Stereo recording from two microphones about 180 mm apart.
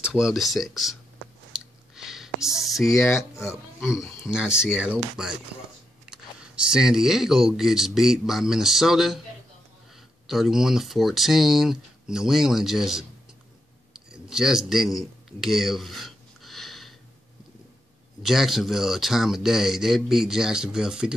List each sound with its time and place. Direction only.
0.0 s speech: 5° right (ahead or behind)
1.5 s clicking: 5° right (ahead or behind)
2.9 s speech: 15° left (ahead or behind)
4.3 s speech: 5° right (ahead or behind)
10.2 s speech: centre (ahead or behind)
13.9 s a sound: 5° right (ahead or behind)
18.2 s speech: centre (ahead or behind)